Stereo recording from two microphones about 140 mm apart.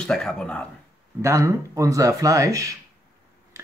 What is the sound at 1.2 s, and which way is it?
Speech, 20° right (ahead or behind).